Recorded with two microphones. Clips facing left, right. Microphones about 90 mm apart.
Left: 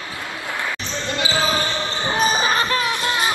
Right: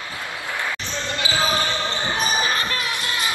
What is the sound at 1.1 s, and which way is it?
Basketball bounce, 20° left (ahead or behind).